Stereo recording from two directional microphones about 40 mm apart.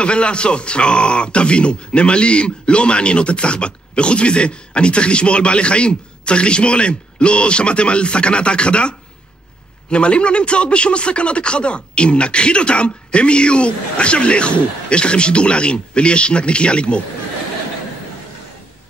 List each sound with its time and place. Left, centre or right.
0.0 s speech: left